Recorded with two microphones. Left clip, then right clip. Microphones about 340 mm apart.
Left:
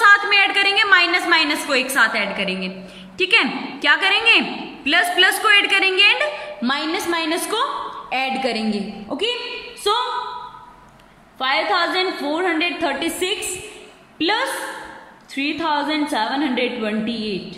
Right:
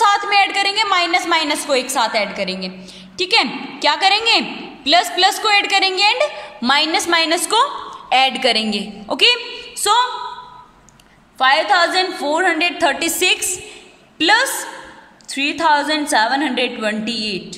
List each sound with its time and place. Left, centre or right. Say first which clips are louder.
0.0 s a sound: left 1 dB; centre
3.2 s a woman's voice: even; centre; by 10.0 s right
11.3 s a woman's voice: right 5 dB; right